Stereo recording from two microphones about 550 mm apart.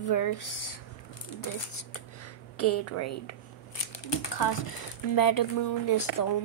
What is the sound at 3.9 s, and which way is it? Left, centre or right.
Speech, left.